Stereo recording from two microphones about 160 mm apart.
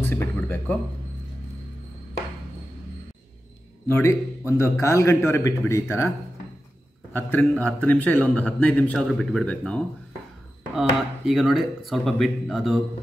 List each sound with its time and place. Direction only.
0.0 s speech: 15° left (ahead or behind)
3.8 s a man's voice: 15° left (ahead or behind); by 12.8 s centre (ahead or behind)